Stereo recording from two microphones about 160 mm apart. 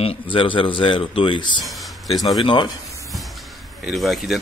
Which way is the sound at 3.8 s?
Centre (ahead or behind).